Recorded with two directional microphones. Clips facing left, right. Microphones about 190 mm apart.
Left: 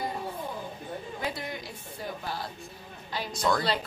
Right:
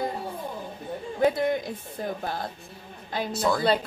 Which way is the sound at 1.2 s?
50° right (ahead or behind).